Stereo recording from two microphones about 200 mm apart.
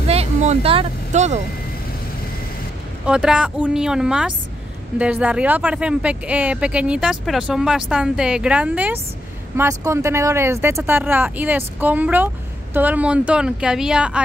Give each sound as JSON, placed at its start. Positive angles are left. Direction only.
{"t": 0.1, "sound": "speech", "side_deg": -30}
{"t": 3.1, "sound": "speech", "side_deg": -5}